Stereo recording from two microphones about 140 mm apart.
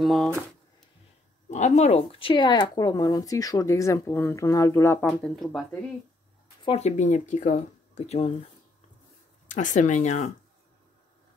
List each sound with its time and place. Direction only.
0.0 s speech: 5° left (ahead or behind)
1.5 s speech: 55° left (ahead or behind); by 5.0 s 20° left (ahead or behind)
5.0 s speech: 5° left (ahead or behind)
6.6 s speech: 40° left (ahead or behind)
7.0 s speech: 60° left (ahead or behind); by 8.5 s 45° left (ahead or behind)
9.5 s speech: 65° left (ahead or behind)